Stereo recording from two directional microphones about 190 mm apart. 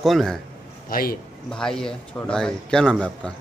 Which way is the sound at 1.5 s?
5° left (ahead or behind).